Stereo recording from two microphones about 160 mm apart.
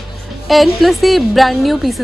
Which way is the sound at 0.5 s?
Centre (ahead or behind).